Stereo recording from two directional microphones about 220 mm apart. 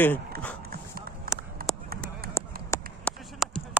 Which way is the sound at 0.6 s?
45° right (ahead or behind).